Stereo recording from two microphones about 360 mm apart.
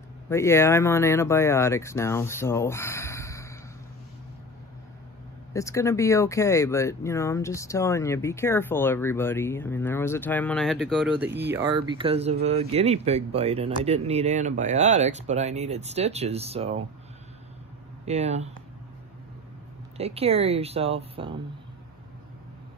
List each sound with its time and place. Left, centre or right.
0.3 s speech: centre
5.5 s speech: centre
18.0 s speech: centre
20.0 s speech: centre